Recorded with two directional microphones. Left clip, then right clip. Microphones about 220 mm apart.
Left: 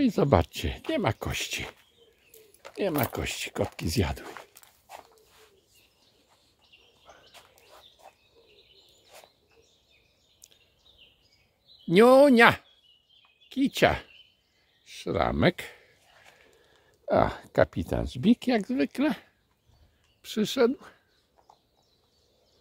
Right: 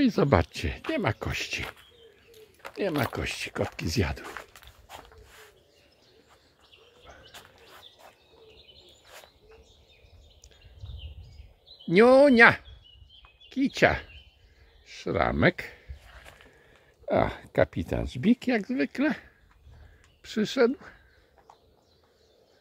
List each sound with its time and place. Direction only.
0.0 s speech: 5° left (ahead or behind)
11.9 s speech: 15° left (ahead or behind)
17.0 s speech: 15° left (ahead or behind)